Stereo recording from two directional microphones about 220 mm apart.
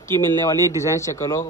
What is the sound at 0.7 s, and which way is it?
Speech, 15° left (ahead or behind).